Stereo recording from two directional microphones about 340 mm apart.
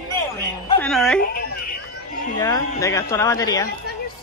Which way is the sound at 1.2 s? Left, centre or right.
Left.